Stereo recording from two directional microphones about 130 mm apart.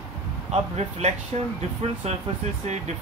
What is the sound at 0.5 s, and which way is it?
Speech, 55° right (ahead or behind).